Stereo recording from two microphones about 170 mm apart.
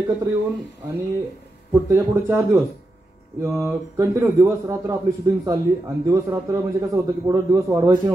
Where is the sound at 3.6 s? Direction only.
15° right (ahead or behind).